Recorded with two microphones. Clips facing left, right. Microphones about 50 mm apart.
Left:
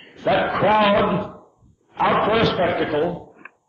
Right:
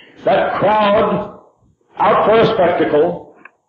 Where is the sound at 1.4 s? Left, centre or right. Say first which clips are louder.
Right 3 dB; centre.